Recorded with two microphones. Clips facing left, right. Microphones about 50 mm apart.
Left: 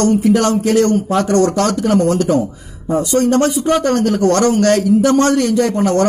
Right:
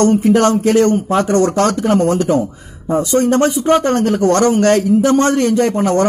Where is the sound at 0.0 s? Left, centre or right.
Right.